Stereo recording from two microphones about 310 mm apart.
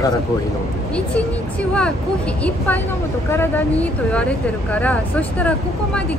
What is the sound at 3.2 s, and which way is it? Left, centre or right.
Speech, centre.